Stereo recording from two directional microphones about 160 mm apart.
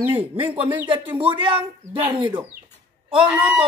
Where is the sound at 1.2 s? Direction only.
30° right (ahead or behind).